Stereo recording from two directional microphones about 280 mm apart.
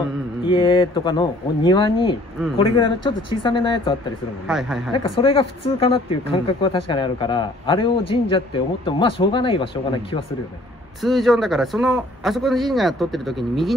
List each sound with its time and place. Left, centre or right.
0.5 s speech: centre
4.5 s a man's voice: centre
5.1 s speech: centre
11.0 s a man's voice: centre